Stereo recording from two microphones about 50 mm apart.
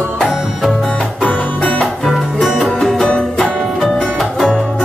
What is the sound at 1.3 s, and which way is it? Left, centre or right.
Music, left.